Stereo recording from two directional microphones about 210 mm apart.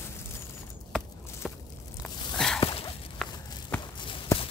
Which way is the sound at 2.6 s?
25° left (ahead or behind).